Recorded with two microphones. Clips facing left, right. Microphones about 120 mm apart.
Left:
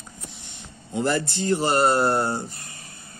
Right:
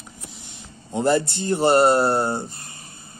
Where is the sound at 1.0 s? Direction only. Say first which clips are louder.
Right 4 dB; 25° right (ahead or behind).